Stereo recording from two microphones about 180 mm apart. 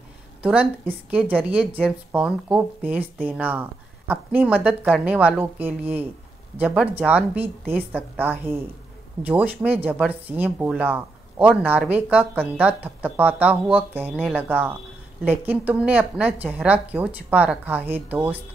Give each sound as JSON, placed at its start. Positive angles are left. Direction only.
{"t": 0.4, "sound": "speech", "side_deg": -5}